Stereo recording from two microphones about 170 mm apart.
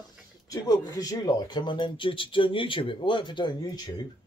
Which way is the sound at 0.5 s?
20° left (ahead or behind).